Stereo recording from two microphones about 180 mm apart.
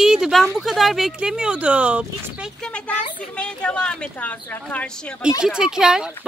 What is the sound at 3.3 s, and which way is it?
A woman's voice, 5° left (ahead or behind).